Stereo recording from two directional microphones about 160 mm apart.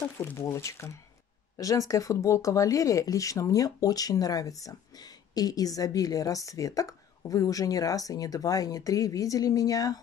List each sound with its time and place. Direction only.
0.2 s speech: 20° left (ahead or behind)